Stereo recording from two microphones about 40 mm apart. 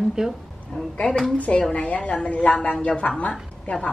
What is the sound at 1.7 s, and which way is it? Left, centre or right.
A woman's voice, left.